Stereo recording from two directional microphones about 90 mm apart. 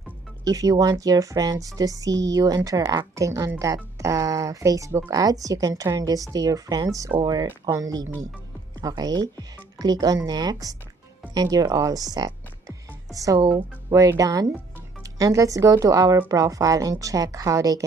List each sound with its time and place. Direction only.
0.5 s speech: 40° right (ahead or behind)
12.6 s music: 40° right (ahead or behind)
13.9 s speech: 40° right (ahead or behind)